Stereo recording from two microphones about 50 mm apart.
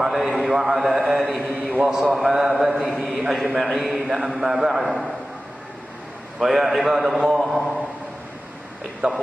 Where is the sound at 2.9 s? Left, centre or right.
Centre.